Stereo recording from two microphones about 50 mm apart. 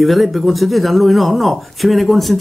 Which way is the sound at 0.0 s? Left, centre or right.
Centre.